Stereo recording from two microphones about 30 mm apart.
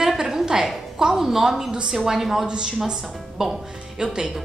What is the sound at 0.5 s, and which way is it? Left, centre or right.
A woman's voice, centre.